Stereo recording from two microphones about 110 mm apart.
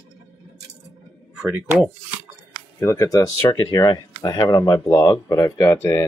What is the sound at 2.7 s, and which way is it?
Speech, 30° left (ahead or behind).